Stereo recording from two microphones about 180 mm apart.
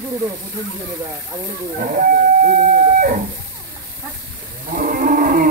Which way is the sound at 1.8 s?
50° right (ahead or behind).